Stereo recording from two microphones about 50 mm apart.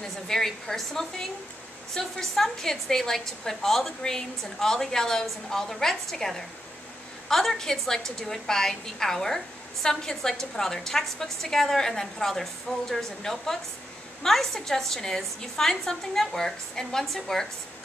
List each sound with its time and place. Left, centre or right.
0.3 s a woman's voice: centre